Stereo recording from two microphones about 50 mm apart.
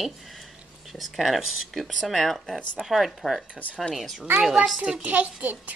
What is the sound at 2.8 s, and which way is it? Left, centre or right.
A woman's voice, centre.